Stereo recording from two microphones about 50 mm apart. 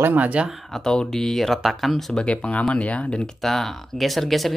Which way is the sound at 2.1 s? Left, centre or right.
Left.